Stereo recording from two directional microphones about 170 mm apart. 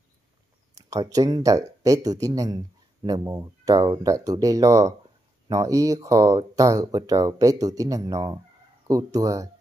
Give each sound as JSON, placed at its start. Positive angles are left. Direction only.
{"t": 0.8, "sound": "speech", "side_deg": -20}